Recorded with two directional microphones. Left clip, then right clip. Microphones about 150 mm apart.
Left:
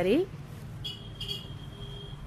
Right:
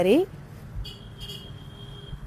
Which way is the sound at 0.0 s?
35° right (ahead or behind).